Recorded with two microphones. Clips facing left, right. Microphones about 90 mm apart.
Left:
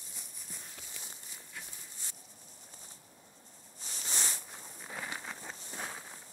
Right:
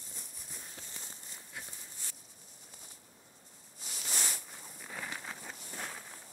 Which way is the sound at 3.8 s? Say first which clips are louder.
Even; 30° left (ahead or behind).